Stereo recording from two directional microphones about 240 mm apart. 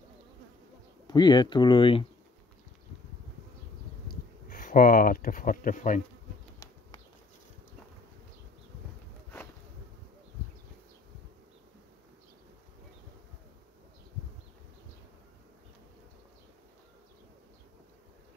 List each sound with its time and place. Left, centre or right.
1.0 s speech: centre
4.1 s speech: left